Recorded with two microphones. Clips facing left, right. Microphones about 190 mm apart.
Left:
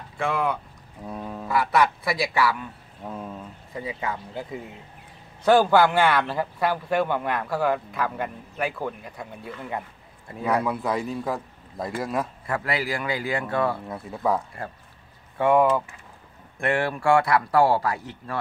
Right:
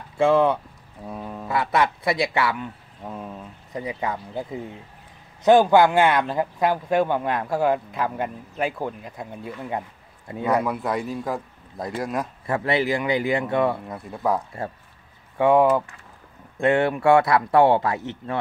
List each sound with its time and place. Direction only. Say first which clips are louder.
0.2 s a man's voice: right 8 dB; 25° right (ahead or behind)
1.0 s speech: even; 5° right (ahead or behind)
1.5 s a man's voice: even; 25° right (ahead or behind)
3.0 s speech: even; 5° right (ahead or behind)
3.7 s a man's voice: right 3 dB; 20° right (ahead or behind)
9.7 s a sound: right 2 dB; 20° right (ahead or behind)
10.4 s a man's voice: right 2 dB; centre (ahead or behind)
12.4 s a man's voice: right 5 dB; 25° right (ahead or behind)
13.8 s a man's voice: right 1 dB; centre (ahead or behind)
15.3 s a man's voice: right 2 dB; 15° right (ahead or behind)